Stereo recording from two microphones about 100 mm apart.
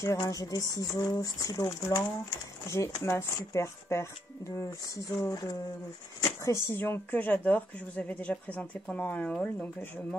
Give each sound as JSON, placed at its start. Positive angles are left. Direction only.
{"t": 0.2, "sound": "speech", "side_deg": 35}
{"t": 6.8, "sound": "speech", "side_deg": 20}